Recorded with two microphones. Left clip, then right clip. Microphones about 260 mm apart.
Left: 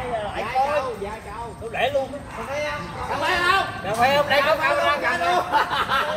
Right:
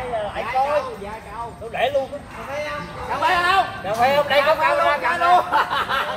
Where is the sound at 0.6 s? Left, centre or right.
Right.